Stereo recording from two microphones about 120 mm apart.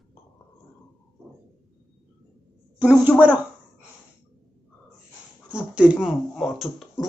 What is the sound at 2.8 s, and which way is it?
Speech, 15° right (ahead or behind).